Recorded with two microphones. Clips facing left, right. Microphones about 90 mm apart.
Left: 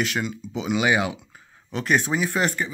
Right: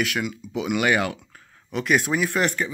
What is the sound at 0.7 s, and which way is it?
Speech, 15° left (ahead or behind).